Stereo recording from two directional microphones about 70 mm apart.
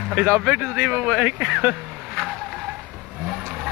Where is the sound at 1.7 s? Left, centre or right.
Centre.